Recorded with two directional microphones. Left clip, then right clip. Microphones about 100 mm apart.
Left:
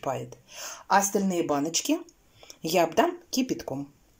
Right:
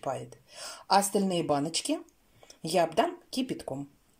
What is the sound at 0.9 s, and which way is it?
Speech, 25° right (ahead or behind).